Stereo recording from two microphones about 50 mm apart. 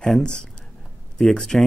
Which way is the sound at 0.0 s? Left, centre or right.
Centre.